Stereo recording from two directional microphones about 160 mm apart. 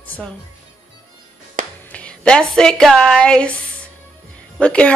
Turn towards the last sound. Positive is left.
turn(degrees=5)  # may be behind; listen again after turning